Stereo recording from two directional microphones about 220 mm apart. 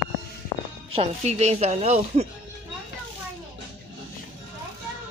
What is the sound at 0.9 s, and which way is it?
Speech, 30° right (ahead or behind).